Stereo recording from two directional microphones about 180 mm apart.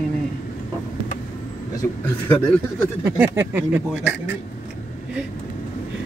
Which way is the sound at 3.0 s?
15° right (ahead or behind).